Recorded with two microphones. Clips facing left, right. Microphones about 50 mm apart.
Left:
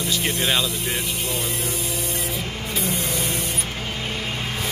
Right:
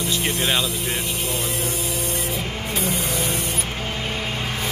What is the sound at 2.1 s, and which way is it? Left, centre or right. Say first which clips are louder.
Printer: right 2 dB; centre.